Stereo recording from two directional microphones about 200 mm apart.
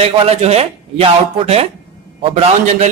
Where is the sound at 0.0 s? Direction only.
30° right (ahead or behind).